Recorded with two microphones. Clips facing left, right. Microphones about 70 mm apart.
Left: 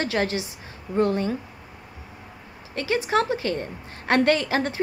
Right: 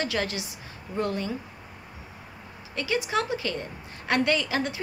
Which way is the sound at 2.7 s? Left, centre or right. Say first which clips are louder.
Left 4 dB; left.